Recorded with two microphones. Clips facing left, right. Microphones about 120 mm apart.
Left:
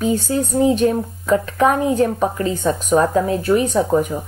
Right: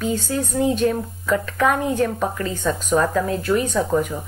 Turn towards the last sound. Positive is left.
turn(degrees=20)  # may be behind; listen again after turning